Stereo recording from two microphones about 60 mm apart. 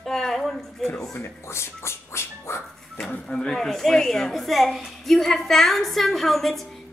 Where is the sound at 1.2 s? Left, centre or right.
Left.